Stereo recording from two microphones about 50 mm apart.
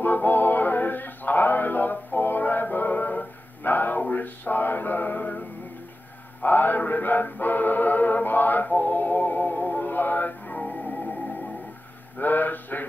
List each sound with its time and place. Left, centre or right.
0.0 s music: left
12.2 s mantra: left